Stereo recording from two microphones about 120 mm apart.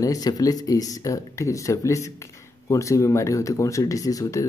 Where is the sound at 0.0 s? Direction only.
30° left (ahead or behind).